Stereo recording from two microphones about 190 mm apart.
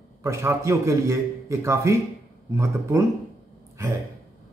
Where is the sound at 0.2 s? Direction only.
15° right (ahead or behind).